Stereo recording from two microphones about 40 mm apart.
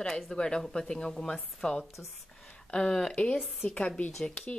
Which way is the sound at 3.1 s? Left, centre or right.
Left.